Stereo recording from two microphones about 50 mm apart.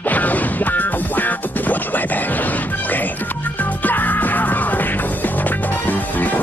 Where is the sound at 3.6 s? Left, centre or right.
Left.